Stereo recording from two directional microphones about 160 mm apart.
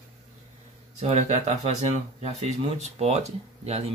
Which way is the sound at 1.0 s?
45° right (ahead or behind).